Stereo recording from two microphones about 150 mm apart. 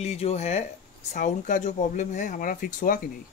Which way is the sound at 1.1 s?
60° left (ahead or behind).